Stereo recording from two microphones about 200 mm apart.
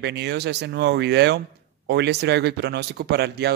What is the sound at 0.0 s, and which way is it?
Speech, 55° right (ahead or behind).